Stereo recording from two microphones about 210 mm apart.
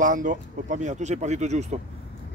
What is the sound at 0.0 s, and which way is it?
Speech, 40° right (ahead or behind).